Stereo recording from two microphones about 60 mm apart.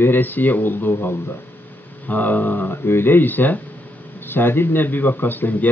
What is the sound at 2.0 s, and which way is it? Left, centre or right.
A man's voice, left.